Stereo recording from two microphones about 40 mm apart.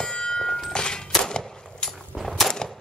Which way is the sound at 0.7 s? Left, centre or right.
Left.